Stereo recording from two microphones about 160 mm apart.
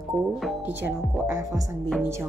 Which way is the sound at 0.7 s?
10° right (ahead or behind).